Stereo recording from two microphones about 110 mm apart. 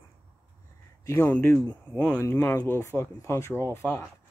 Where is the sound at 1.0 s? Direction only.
20° left (ahead or behind).